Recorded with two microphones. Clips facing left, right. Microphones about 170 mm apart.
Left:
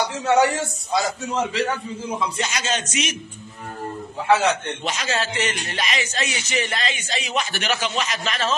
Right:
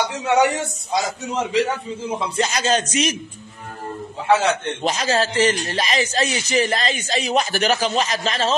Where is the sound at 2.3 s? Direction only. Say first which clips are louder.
Right 6 dB; 35° right (ahead or behind).